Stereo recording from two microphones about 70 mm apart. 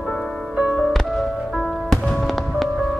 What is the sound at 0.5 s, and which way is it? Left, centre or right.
Music, centre.